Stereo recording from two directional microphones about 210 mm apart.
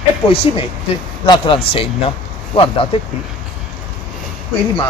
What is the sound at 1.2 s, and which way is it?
Speech, 25° left (ahead or behind).